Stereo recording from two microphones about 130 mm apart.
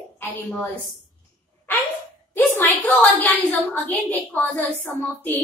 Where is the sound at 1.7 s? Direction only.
15° left (ahead or behind).